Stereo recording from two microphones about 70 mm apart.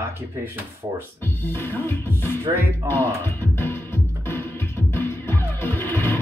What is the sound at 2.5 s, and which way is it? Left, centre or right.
Speech, right.